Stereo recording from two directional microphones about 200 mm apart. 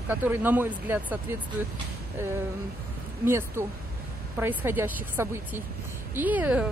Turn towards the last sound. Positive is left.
turn(degrees=-5)  # may be behind; listen again after turning